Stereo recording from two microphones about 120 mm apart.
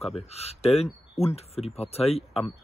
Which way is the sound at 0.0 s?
60° left (ahead or behind).